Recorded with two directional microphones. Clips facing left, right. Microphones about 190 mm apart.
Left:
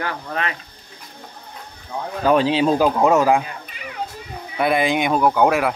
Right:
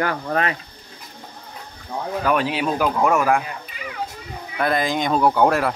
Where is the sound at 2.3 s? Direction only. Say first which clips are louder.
Left 6 dB; 25° left (ahead or behind).